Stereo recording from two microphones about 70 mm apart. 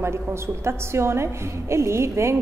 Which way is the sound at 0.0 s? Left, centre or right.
Right.